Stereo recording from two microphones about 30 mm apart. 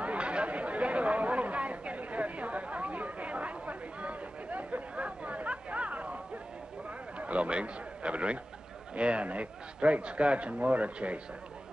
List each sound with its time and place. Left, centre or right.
0.0 s chatter: right
7.2 s a man's voice: right